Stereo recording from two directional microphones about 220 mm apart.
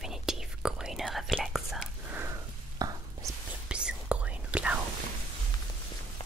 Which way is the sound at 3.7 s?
5° right (ahead or behind).